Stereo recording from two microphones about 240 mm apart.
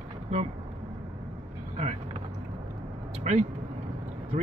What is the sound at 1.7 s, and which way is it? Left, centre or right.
Vehicle, right.